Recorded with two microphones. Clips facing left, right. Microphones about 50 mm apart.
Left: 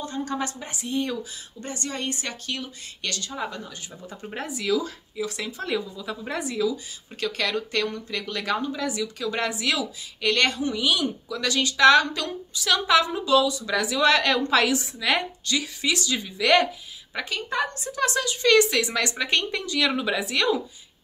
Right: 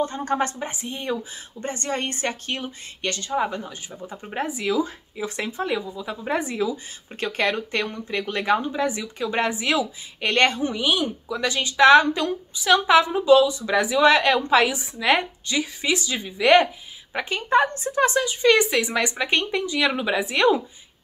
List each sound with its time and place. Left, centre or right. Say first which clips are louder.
0.0 s a woman's voice: right 5 dB; right
18.1 s a woman's voice: left 2 dB; centre